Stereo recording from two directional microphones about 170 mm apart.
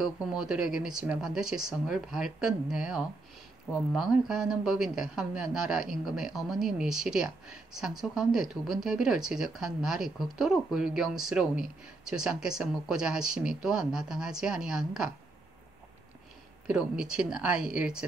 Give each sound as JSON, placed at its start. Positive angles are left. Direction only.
{"t": 0.0, "sound": "speech", "side_deg": -5}
{"t": 16.6, "sound": "speech", "side_deg": -5}